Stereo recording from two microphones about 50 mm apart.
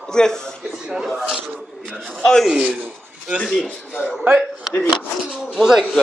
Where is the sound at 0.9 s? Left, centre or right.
Centre.